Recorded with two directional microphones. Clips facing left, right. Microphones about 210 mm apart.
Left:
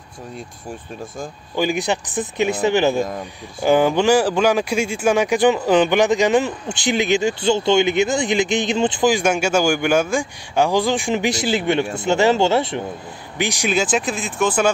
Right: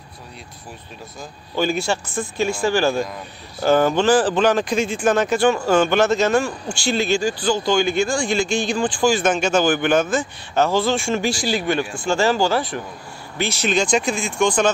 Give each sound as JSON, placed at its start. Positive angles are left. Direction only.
{"t": 1.5, "sound": "speech", "side_deg": 15}